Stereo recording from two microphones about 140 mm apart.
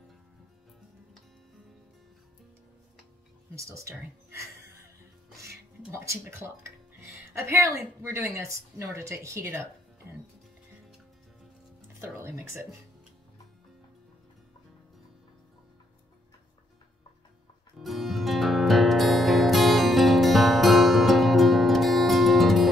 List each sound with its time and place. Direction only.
3.5 s speech: 20° right (ahead or behind)
5.8 s speech: 15° right (ahead or behind)
6.6 s music: 20° right (ahead or behind)
8.0 s speech: 20° right (ahead or behind)
12.0 s music: 20° right (ahead or behind)
17.7 s music: centre (ahead or behind)